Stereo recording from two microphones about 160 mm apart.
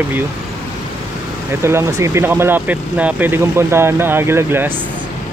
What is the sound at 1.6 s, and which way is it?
Speech, 15° right (ahead or behind).